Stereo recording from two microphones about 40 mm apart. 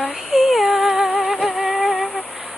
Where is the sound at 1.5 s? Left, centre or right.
Right.